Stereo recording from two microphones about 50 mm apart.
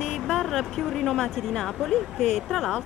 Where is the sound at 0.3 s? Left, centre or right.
Centre.